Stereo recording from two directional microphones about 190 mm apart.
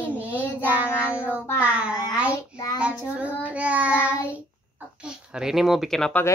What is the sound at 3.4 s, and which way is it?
Child singing, 5° right (ahead or behind).